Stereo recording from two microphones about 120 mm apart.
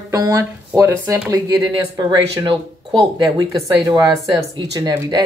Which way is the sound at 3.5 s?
30° right (ahead or behind).